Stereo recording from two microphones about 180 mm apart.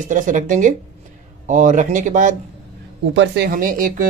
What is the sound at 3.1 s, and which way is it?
Speech, 85° right.